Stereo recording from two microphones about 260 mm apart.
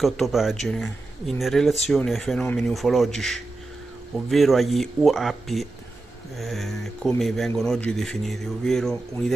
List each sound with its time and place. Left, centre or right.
0.0 s speech: centre